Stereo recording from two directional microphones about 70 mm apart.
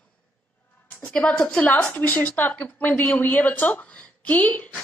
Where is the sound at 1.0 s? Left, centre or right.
Centre.